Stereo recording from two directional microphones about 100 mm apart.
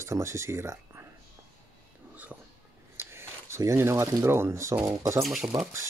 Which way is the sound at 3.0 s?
25° right (ahead or behind).